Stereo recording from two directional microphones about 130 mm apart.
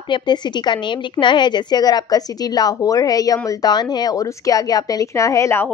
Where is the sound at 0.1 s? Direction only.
35° left (ahead or behind).